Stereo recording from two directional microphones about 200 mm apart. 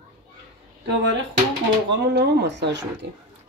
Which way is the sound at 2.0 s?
55° right (ahead or behind).